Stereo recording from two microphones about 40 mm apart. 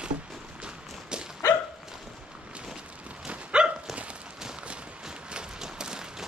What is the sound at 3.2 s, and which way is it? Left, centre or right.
Dog, right.